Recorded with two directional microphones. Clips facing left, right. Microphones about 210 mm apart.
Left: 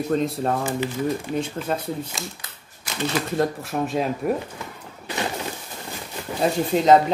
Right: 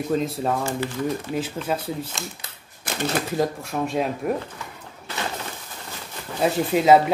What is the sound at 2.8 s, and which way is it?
Typewriter, 50° right (ahead or behind).